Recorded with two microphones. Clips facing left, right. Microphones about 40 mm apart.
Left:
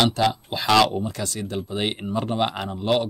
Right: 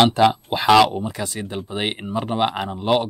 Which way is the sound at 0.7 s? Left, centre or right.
Centre.